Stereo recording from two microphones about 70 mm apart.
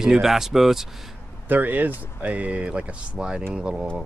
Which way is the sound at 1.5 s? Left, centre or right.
Right.